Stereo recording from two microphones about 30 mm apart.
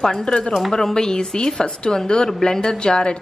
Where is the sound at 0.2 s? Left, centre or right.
Left.